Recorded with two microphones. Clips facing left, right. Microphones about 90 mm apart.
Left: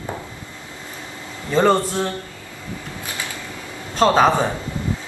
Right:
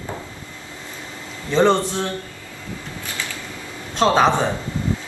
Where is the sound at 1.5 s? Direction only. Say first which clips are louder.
Even; 10° left (ahead or behind).